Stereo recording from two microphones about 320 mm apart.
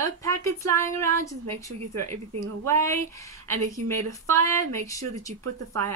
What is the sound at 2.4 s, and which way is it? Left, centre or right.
Speech, centre.